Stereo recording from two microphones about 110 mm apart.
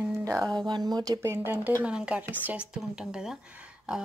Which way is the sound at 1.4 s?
15° right (ahead or behind).